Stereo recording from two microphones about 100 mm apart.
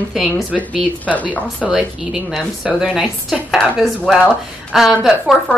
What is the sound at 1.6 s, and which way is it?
A woman's voice, 10° right (ahead or behind).